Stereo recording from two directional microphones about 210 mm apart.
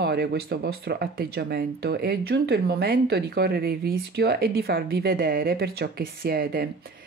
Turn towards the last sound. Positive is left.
turn(degrees=-45)  # may be behind; listen again after turning